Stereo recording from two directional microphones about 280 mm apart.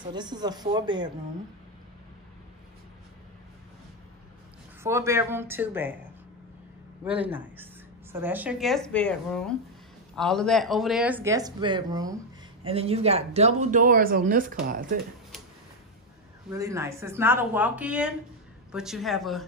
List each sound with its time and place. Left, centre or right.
0.1 s speech: centre
4.8 s speech: centre
7.1 s speech: centre; by 15.0 s right
16.4 s speech: centre